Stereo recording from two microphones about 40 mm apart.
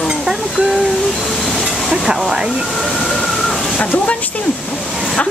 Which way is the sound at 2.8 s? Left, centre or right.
Centre.